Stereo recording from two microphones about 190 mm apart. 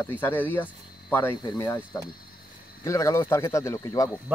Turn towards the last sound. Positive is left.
turn(degrees=15)  # may be behind; listen again after turning